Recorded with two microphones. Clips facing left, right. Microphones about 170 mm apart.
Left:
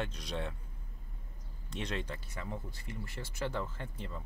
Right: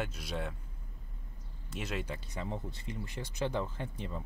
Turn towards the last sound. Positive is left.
turn(degrees=-15)  # may be behind; listen again after turning